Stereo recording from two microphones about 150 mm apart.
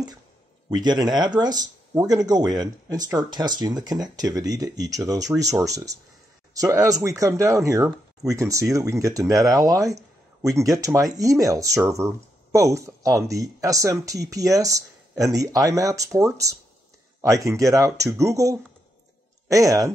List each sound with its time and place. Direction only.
0.7 s speech: 25° right (ahead or behind)